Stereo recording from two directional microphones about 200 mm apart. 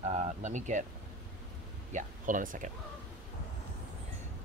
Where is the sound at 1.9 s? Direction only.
40° right (ahead or behind).